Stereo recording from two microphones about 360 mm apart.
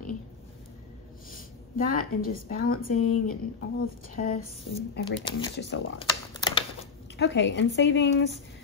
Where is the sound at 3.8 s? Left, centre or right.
Left.